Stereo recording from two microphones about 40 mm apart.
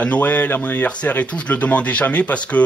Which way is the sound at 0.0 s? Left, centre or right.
Left.